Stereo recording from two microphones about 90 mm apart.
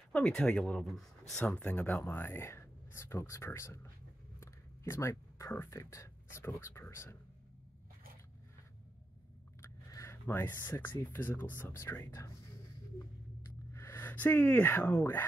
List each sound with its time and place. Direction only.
0.1 s speech: 10° left (ahead or behind)
1.4 s speech: 15° left (ahead or behind)
9.8 s a sound: 40° left (ahead or behind)
10.2 s speech: 25° left (ahead or behind)
13.7 s speech: 25° left (ahead or behind)